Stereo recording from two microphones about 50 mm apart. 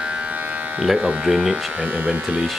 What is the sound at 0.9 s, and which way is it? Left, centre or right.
Speech, right.